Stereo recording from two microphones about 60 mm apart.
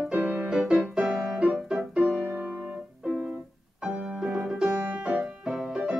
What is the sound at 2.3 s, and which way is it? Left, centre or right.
Music, right.